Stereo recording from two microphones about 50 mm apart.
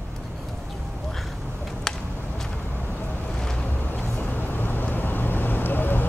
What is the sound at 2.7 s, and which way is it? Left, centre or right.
Vehicle, left.